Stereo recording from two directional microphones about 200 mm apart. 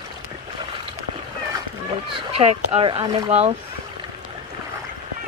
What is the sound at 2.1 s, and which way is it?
Speech, 30° right (ahead or behind).